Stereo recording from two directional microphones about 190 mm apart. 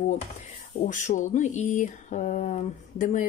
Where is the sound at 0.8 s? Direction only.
40° left (ahead or behind).